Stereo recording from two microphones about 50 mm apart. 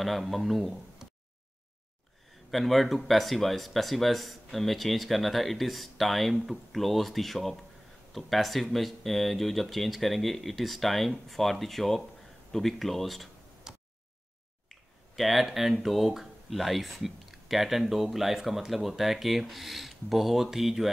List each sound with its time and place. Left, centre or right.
0.0 s speech: centre
2.5 s speech: centre
13.7 s a sound: centre
14.7 s finger snapping: centre
15.8 s speech: centre